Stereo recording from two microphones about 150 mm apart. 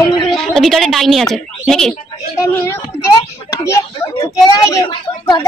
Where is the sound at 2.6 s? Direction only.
15° left (ahead or behind).